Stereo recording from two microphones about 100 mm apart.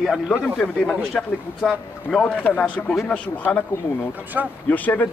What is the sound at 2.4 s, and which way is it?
Speech, 15° left (ahead or behind).